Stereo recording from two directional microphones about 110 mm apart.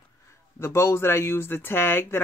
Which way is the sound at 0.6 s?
25° left (ahead or behind).